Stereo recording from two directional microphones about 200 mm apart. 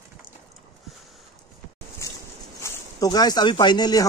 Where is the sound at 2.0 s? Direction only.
15° left (ahead or behind).